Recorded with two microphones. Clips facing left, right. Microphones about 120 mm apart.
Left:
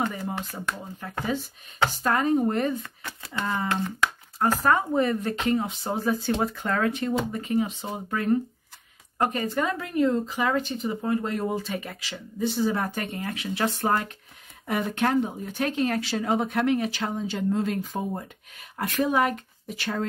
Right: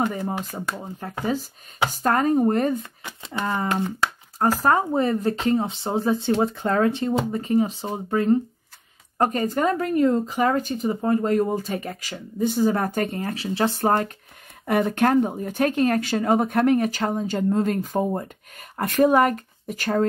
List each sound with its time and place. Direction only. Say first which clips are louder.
1.2 s speech: right 4 dB; 40° right (ahead or behind)
3.0 s a sound: right 3 dB; 15° right (ahead or behind)
3.5 s speech: right 3 dB; 15° right (ahead or behind)
4.0 s speech: right 2 dB; 35° right (ahead or behind)
9.2 s speech: right 4 dB; 45° right (ahead or behind)
14.7 s speech: right 5 dB; 50° right (ahead or behind)